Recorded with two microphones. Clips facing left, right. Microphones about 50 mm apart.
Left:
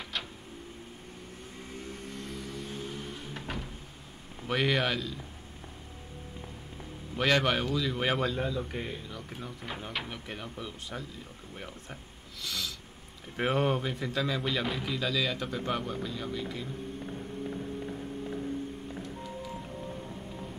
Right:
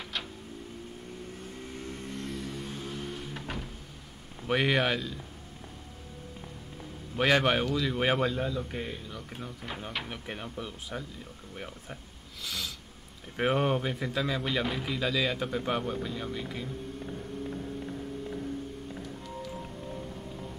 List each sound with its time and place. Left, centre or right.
0.0 s a sound: centre
2.1 s a sound: right
3.3 s cupboard open or close: centre
4.5 s speech: centre
7.2 s speech: centre
8.4 s speech: centre